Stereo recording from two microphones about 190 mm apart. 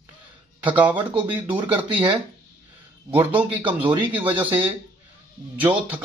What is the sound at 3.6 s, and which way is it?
Speech, 25° right (ahead or behind).